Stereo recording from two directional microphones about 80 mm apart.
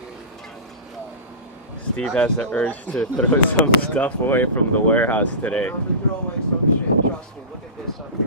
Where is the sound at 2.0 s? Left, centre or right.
Centre.